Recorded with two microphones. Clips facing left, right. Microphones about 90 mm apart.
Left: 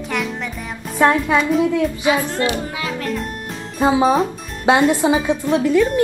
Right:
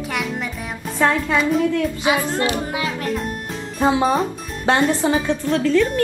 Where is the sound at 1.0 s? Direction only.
15° left (ahead or behind).